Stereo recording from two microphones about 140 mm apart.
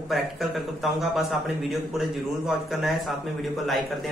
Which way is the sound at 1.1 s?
Centre (ahead or behind).